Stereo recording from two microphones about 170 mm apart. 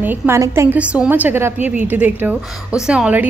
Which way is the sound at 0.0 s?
15° right (ahead or behind).